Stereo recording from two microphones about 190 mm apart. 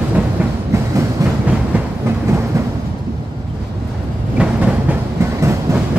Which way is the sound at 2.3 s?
15° right (ahead or behind).